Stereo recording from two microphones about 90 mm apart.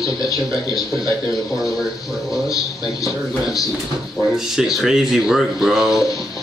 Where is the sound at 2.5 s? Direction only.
40° left (ahead or behind).